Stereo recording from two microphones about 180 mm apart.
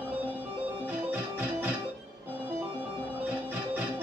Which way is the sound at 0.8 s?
10° right (ahead or behind).